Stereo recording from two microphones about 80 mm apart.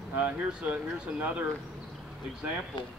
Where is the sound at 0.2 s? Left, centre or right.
Centre.